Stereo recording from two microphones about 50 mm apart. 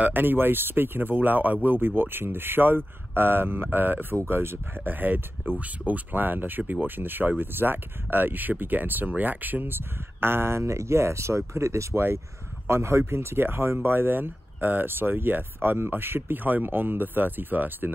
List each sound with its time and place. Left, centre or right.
0.0 s speech: right
12.6 s speech: right